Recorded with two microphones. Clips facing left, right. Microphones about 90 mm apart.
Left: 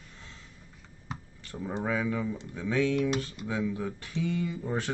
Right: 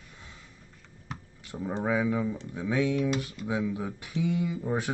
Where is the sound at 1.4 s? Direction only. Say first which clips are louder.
Right 3 dB; 15° right (ahead or behind).